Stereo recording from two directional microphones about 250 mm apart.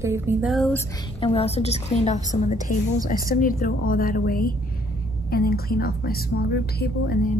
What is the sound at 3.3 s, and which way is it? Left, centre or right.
A woman's voice, left.